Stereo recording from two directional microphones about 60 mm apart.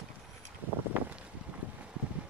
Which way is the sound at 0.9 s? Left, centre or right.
Right.